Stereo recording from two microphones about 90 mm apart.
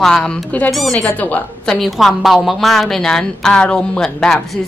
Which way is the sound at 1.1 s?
15° left (ahead or behind).